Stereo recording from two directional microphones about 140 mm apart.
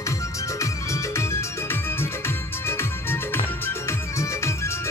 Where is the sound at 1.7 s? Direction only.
15° left (ahead or behind).